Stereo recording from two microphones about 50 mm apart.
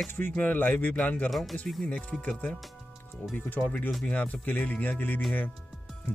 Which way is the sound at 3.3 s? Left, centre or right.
Left.